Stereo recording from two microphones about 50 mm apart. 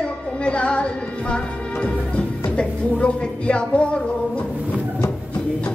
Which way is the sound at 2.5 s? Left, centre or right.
Left.